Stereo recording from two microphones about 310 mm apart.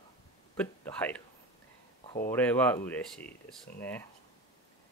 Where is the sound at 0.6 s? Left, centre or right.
Centre.